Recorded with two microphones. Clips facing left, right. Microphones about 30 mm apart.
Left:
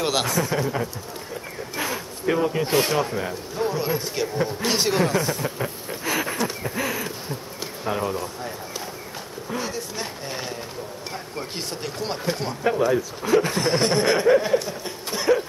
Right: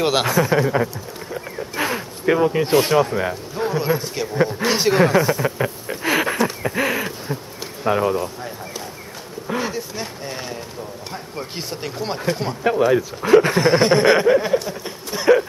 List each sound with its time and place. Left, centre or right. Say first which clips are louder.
0.0 s speech: right 5 dB; centre
1.8 s a sound: right 5 dB; right
2.7 s speech: right 6 dB; centre
5.0 s a sound: right 6 dB; centre
7.8 s speech: right 7 dB; right
9.5 s speech: right 5 dB; centre
9.9 s speech: right 2 dB; centre
12.6 s speech: right 4 dB; right
14.2 s speech: right 2 dB; centre
15.3 s a sound: right 6 dB; right